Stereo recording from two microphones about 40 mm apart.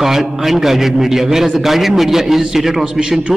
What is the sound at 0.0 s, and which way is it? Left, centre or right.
A man's voice, centre.